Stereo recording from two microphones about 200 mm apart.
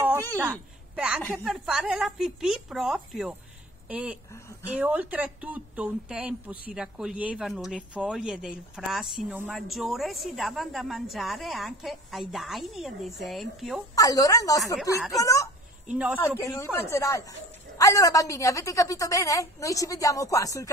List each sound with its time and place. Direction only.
0.9 s speech: 5° right (ahead or behind)
13.9 s a woman's voice: 15° left (ahead or behind)
15.9 s speech: 5° right (ahead or behind)
16.2 s a woman's voice: 15° left (ahead or behind)